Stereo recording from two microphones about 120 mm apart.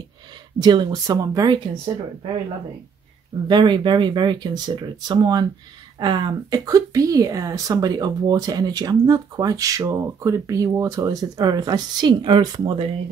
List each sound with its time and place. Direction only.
0.6 s speech: 40° right (ahead or behind)
3.4 s speech: 40° right (ahead or behind)